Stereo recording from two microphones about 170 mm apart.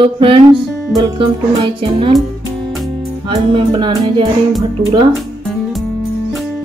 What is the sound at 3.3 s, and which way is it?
Music, 30° right (ahead or behind).